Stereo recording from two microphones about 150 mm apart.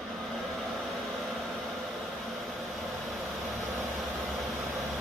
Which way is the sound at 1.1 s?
Centre (ahead or behind).